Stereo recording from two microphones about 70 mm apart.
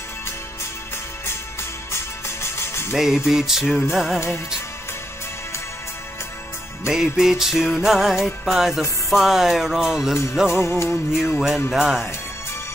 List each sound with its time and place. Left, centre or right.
1.2 s music: left
2.9 s music: centre
6.9 s music: centre
10.5 s music: left
11.3 s music: centre